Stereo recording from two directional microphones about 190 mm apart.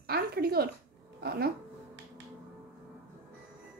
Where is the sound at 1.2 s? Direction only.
55° right (ahead or behind).